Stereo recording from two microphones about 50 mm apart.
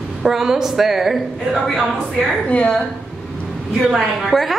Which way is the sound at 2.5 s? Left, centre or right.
Left.